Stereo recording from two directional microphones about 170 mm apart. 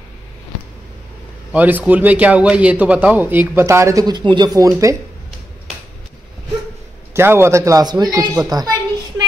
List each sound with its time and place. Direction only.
1.5 s a man's voice: 10° right (ahead or behind)
7.2 s speech: 15° right (ahead or behind)